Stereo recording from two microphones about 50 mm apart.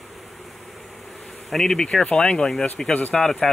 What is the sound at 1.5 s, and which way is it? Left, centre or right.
Speech, centre.